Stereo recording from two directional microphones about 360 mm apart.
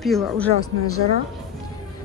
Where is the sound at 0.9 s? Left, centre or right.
Left.